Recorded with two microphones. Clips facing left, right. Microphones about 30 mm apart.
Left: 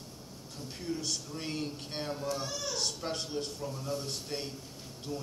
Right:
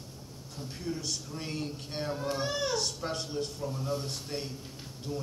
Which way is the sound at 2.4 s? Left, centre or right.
Right.